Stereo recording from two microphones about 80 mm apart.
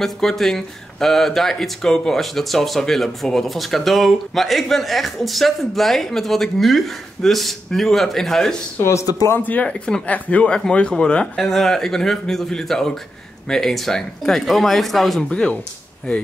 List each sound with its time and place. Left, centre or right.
0.0 s speech: centre
8.8 s speech: left
9.3 s speech: left